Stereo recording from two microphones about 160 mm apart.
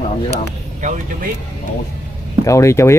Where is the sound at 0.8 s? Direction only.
50° right (ahead or behind).